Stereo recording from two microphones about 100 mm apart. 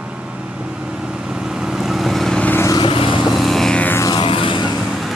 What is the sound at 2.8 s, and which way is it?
Vehicle, 60° left (ahead or behind).